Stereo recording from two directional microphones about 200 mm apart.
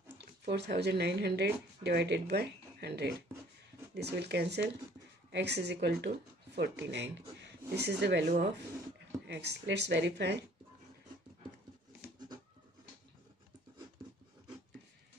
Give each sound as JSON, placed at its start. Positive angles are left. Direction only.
{"t": 0.2, "sound": "speech", "side_deg": -55}
{"t": 9.3, "sound": "speech", "side_deg": -55}